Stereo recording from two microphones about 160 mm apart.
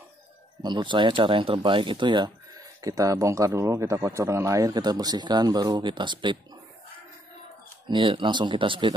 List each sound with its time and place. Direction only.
0.6 s speech: 25° right (ahead or behind)
7.9 s speech: 30° right (ahead or behind)